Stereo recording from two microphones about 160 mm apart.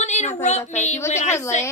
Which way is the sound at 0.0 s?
45° left (ahead or behind).